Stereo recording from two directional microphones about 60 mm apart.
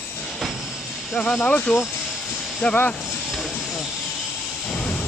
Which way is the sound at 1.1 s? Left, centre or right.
Centre.